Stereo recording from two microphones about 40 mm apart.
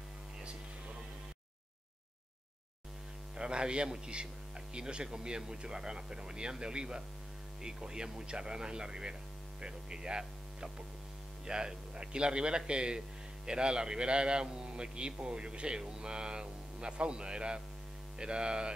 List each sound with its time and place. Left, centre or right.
3.3 s speech: right
9.6 s hum: centre
11.4 s speech: centre